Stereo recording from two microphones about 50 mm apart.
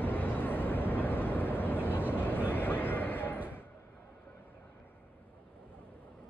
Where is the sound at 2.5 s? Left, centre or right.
Left.